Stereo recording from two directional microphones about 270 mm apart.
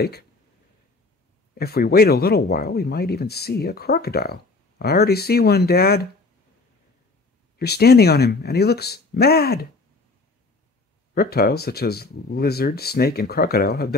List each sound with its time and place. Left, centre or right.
1.5 s speech: left
7.5 s speech: left
11.1 s speech: left